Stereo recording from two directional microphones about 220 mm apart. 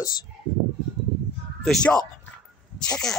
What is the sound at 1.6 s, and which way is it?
Speech, 5° left (ahead or behind).